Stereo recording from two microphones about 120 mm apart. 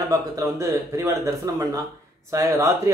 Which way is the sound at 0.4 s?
25° right (ahead or behind).